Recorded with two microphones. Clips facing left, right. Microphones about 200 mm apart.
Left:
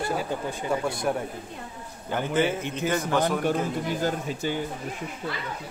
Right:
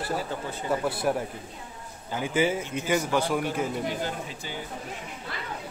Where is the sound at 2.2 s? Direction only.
10° right (ahead or behind).